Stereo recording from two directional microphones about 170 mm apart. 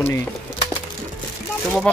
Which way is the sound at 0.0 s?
10° left (ahead or behind).